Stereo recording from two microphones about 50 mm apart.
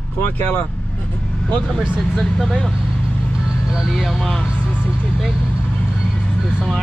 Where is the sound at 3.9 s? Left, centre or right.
Centre.